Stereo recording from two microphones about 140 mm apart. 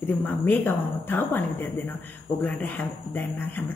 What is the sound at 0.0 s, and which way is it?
A woman's voice, 15° left (ahead or behind).